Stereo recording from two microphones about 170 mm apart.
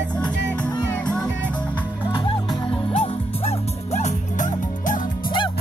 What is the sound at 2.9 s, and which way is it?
Music, 40° left (ahead or behind).